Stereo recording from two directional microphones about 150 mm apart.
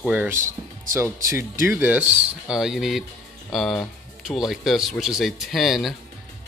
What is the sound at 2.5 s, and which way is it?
Speech, 5° right (ahead or behind).